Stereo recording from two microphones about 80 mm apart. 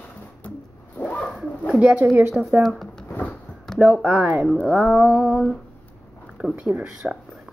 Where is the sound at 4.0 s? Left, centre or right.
Centre.